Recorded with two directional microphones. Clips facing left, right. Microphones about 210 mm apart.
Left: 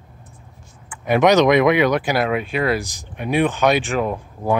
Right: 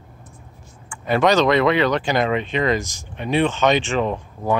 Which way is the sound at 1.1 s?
15° left (ahead or behind).